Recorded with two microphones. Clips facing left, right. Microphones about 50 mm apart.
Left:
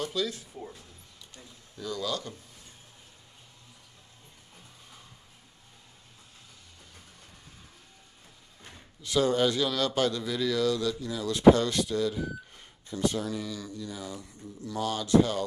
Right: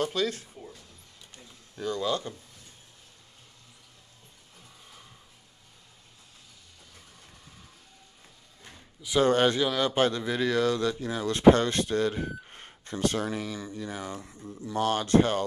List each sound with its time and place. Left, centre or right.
0.0 s speech: right
1.3 s a sound: right
9.2 s speech: right
9.6 s speech: right
9.9 s speech: right
14.2 s speech: right
14.8 s speech: right